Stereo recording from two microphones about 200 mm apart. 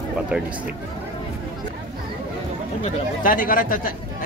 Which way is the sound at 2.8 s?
45° left (ahead or behind).